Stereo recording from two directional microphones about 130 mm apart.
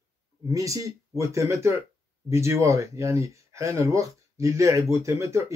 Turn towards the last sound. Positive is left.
turn(degrees=-20)  # may be behind; listen again after turning